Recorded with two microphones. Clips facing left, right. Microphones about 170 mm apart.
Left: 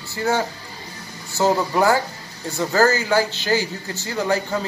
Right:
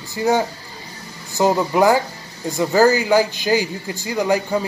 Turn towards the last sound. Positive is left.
turn(degrees=-15)  # may be behind; listen again after turning